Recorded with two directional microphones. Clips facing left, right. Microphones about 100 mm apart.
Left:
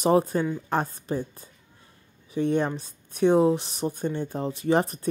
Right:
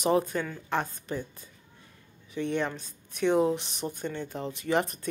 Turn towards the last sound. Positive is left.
turn(degrees=35)  # may be behind; listen again after turning